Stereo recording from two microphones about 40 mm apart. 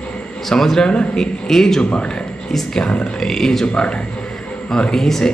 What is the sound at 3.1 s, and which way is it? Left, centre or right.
Speech, centre.